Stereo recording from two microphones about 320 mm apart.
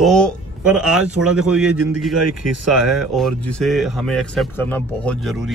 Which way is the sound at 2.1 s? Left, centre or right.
Right.